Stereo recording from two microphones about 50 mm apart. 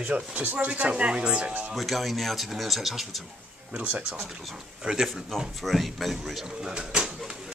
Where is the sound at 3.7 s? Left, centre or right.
Right.